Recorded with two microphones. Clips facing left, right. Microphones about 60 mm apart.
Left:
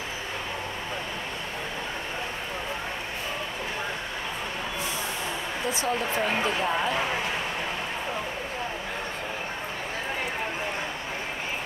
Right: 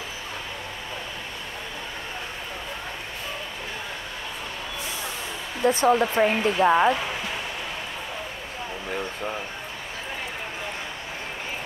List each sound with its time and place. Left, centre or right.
5.7 s speech: right